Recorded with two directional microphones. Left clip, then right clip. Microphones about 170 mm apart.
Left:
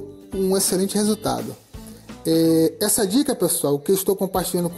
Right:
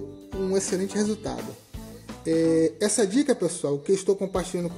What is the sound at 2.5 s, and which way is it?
Speech, 30° left (ahead or behind).